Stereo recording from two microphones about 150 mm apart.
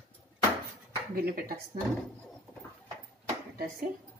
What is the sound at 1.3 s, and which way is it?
Speech, 75° right (ahead or behind).